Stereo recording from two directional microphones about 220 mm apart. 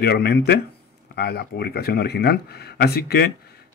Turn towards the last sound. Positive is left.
turn(degrees=45)  # may be behind; listen again after turning